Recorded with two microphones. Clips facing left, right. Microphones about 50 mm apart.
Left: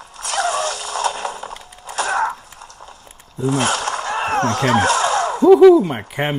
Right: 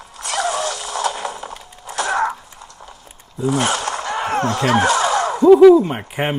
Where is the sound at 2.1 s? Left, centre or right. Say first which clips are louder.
Right 1 dB; centre.